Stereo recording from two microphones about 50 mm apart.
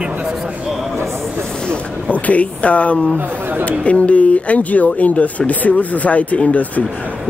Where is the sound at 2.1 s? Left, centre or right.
Left.